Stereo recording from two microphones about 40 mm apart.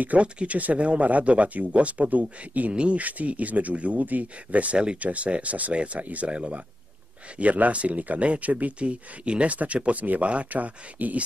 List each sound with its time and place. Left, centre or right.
0.2 s speech: right
2.7 s speech: right
3.0 s speech: right
8.7 s speech: right